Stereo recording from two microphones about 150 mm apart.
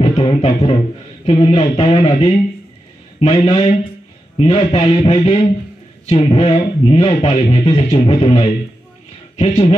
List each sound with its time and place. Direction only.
0.0 s speech: 40° left (ahead or behind)